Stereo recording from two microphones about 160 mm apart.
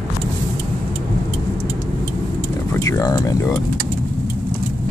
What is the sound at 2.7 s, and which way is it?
Speech, 20° left (ahead or behind).